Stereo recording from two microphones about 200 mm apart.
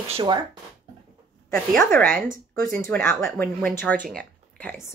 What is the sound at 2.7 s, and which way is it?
Speech, 5° left (ahead or behind).